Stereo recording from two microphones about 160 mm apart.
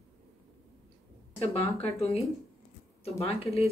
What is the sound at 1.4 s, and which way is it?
A woman's voice, 40° left (ahead or behind).